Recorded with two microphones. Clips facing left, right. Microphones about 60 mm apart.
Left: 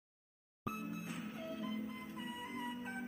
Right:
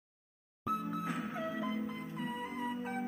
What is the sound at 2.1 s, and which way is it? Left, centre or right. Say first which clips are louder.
Music: right 6 dB; right.